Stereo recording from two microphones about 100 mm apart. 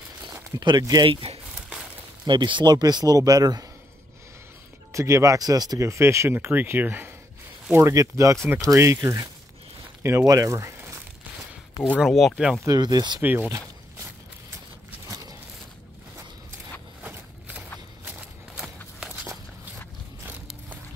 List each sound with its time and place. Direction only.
0.6 s speech: 40° right (ahead or behind)
1.0 s speech: 65° right (ahead or behind)
1.5 s a sound: 10° right (ahead or behind)
2.2 s speech: 50° right (ahead or behind)
4.9 s speech: 30° right (ahead or behind)
7.7 s speech: 30° right (ahead or behind)
12.1 s speech: centre (ahead or behind)
12.6 s speech: 40° right (ahead or behind)
13.2 s speech: 20° right (ahead or behind)
15.0 s a sound: 40° right (ahead or behind)
17.0 s a sound: 15° right (ahead or behind)